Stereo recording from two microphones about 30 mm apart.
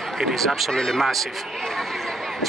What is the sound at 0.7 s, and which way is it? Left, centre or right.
Speech, centre.